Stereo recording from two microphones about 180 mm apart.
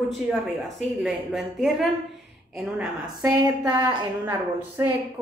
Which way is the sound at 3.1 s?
15° right (ahead or behind).